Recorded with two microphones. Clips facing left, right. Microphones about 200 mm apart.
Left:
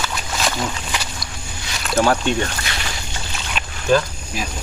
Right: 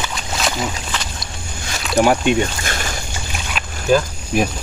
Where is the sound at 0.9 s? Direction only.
15° left (ahead or behind).